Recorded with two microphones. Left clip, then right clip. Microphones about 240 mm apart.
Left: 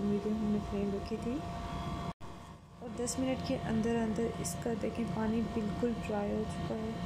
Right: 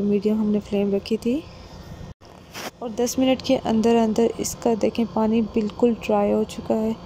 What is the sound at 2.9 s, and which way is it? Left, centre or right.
Speech, right.